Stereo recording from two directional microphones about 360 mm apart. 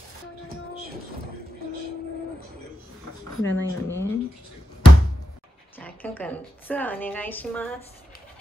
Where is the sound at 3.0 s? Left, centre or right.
Left.